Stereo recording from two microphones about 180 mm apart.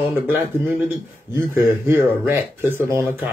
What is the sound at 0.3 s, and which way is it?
A man's voice, 10° right (ahead or behind).